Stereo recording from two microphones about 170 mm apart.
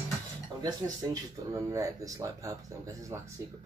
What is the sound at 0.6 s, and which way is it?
Speech, 20° right (ahead or behind).